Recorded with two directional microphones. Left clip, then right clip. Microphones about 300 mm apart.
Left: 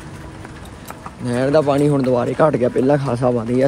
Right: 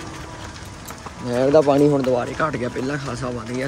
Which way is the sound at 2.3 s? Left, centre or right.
Centre.